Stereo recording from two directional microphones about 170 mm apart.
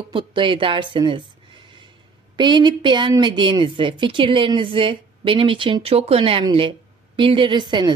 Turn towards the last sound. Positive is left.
turn(degrees=-25)  # may be behind; listen again after turning